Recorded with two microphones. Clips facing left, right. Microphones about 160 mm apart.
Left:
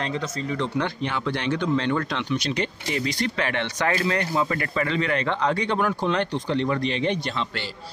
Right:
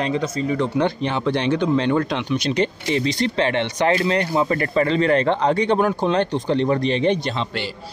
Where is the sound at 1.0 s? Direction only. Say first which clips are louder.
Right 6 dB; 25° right (ahead or behind).